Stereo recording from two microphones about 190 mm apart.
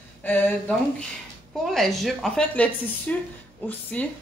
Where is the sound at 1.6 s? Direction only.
Centre (ahead or behind).